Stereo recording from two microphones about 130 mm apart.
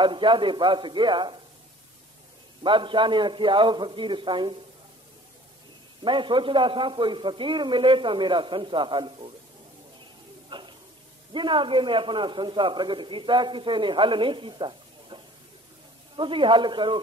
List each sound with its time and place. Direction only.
0.0 s a man's voice: 40° right (ahead or behind)
2.6 s a man's voice: 40° right (ahead or behind)
6.0 s a man's voice: 40° right (ahead or behind)
10.5 s a sound: 40° right (ahead or behind)
11.3 s a man's voice: 40° right (ahead or behind)
16.2 s a man's voice: 40° right (ahead or behind)